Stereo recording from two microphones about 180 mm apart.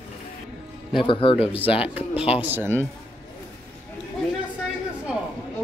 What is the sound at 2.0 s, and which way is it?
Speech, 5° right (ahead or behind).